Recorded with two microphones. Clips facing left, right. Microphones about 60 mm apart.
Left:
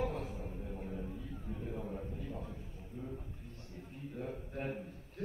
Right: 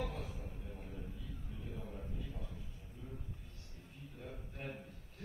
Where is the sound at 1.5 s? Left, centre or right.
Left.